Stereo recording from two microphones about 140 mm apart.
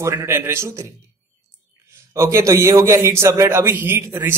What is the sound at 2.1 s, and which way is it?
A man's voice, 20° right (ahead or behind).